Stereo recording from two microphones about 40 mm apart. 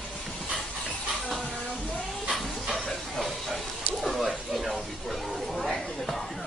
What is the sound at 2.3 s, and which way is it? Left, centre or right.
Dog, centre.